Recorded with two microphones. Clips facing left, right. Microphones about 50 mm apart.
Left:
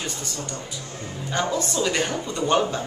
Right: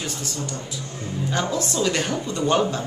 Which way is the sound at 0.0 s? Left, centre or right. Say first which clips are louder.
Right 2 dB; centre.